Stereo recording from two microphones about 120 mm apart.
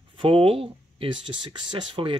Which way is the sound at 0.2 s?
50° right (ahead or behind).